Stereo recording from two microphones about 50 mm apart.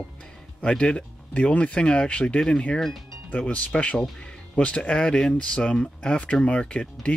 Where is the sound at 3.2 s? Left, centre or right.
Left.